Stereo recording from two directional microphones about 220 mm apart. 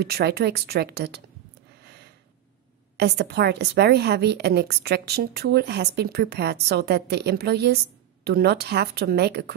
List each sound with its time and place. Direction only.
0.0 s a woman's voice: 50° right (ahead or behind)
3.0 s a woman's voice: 45° right (ahead or behind)